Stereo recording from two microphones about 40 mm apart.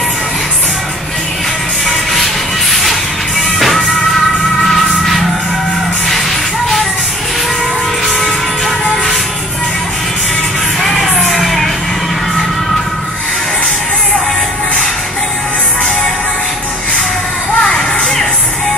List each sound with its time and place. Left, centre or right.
2.8 s music: centre
8.2 s music: centre
10.8 s music: centre
17.6 s music: centre